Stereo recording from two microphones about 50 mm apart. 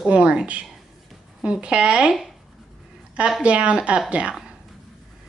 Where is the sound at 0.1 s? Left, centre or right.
Right.